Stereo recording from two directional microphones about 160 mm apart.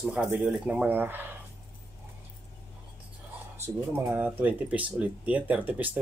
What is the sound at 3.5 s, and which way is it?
Speech, 15° right (ahead or behind).